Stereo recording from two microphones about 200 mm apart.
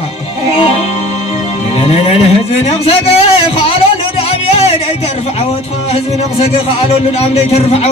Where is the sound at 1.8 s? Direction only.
30° left (ahead or behind).